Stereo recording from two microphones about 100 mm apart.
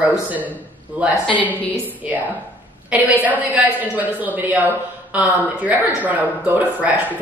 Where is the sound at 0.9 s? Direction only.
15° right (ahead or behind).